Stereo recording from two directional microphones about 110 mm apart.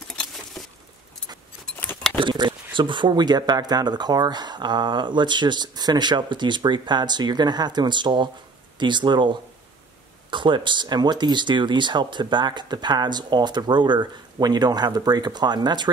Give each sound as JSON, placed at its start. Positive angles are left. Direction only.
{"t": 2.1, "sound": "speech", "side_deg": -45}